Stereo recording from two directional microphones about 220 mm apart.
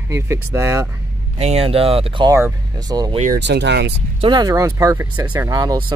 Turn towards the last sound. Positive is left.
turn(degrees=-15)  # may be behind; listen again after turning